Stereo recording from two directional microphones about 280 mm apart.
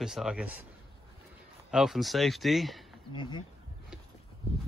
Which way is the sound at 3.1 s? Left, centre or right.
Centre.